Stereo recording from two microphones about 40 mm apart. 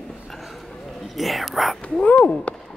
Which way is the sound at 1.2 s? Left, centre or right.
Centre.